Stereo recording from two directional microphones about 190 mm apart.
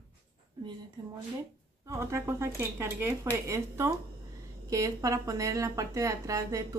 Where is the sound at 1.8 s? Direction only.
15° right (ahead or behind).